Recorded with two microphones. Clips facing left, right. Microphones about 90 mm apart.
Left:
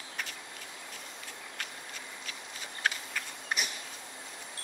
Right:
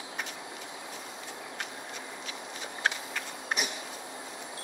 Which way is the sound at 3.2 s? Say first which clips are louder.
Right 2 dB; 5° right (ahead or behind).